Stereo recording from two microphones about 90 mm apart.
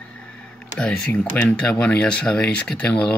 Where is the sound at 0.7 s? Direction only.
10° left (ahead or behind).